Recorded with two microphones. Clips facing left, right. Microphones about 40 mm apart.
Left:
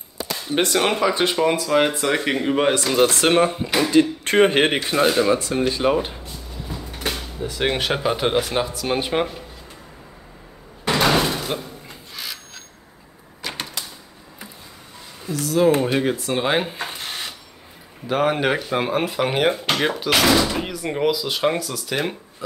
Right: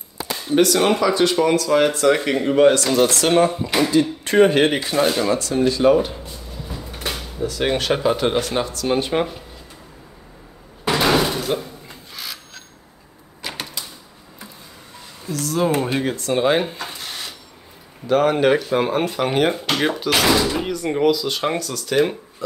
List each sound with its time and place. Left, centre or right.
0.6 s speech: left
3.6 s speech: centre
3.9 s a man's voice: left
4.9 s speech: centre
7.4 s speech: centre
10.9 s door: centre
13.4 s a sound: centre
15.2 s speech: centre
16.7 s rub: left
18.0 s speech: centre